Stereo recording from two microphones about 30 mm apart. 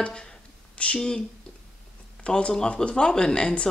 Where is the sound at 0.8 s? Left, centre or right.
Left.